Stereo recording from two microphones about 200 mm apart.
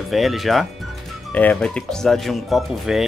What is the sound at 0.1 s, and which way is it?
Speech, centre (ahead or behind).